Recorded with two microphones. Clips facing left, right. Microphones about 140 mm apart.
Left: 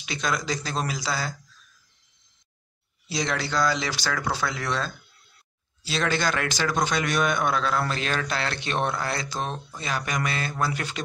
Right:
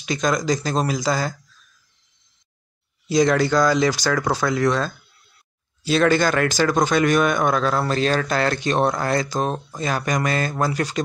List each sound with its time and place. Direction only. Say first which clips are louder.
0.0 s speech: right 7 dB; 45° right (ahead or behind)
3.1 s speech: right 11 dB; 45° right (ahead or behind)